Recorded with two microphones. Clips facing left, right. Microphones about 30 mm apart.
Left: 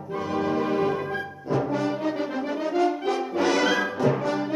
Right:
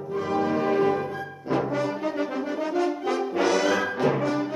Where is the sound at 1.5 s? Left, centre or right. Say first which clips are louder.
Even; right.